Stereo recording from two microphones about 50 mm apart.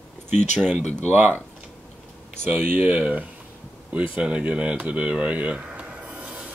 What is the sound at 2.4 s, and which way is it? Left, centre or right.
Speech, right.